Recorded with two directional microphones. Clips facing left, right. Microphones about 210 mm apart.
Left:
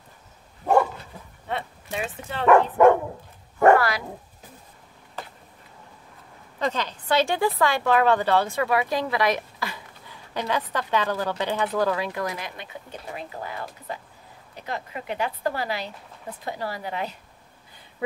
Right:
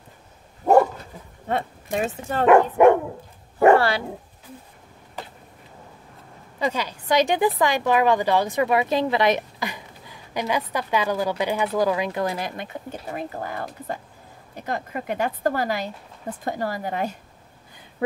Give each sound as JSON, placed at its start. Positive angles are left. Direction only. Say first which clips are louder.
{"t": 1.5, "sound": "speech", "louder": "right 5 dB", "side_deg": -45}
{"t": 2.4, "sound": "speech", "louder": "right 2 dB", "side_deg": -20}
{"t": 3.7, "sound": "dog", "louder": "right 2 dB", "side_deg": -30}
{"t": 6.6, "sound": "speech", "louder": "right 1 dB", "side_deg": -10}